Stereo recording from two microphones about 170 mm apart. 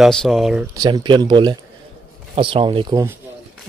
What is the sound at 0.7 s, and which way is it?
Speech, 25° right (ahead or behind).